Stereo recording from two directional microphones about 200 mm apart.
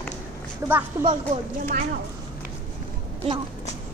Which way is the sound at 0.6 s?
10° right (ahead or behind).